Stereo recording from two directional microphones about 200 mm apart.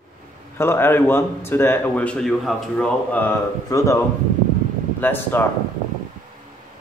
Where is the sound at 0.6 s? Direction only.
10° left (ahead or behind).